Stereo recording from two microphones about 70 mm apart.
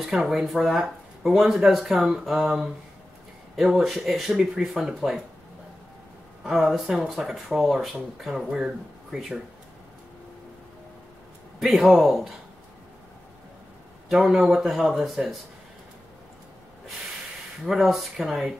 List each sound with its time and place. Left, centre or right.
0.2 s speech: centre
6.4 s speech: centre
11.6 s speech: centre
14.1 s speech: centre
17.6 s speech: centre